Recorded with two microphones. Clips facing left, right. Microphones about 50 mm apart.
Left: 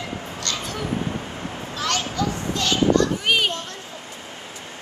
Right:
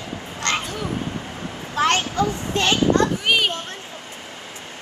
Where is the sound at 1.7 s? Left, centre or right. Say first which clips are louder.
Right 6 dB; right.